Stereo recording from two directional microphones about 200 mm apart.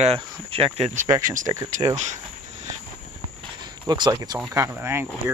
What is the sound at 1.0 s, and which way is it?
Speech, 15° right (ahead or behind).